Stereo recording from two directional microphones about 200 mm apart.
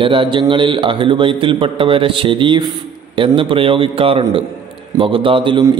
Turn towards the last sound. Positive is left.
turn(degrees=-25)  # may be behind; listen again after turning